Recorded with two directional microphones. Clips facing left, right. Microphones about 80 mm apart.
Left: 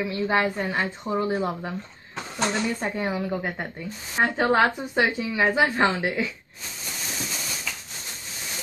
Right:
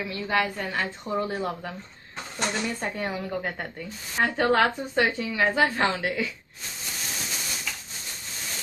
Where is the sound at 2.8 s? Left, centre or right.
Centre.